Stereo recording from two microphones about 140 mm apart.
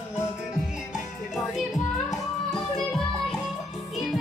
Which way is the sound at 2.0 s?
Centre (ahead or behind).